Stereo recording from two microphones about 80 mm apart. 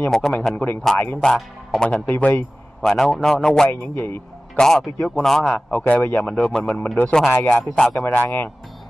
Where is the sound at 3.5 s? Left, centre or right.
Centre.